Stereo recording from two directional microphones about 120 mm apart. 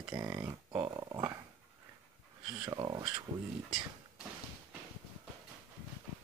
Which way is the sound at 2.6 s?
40° right (ahead or behind).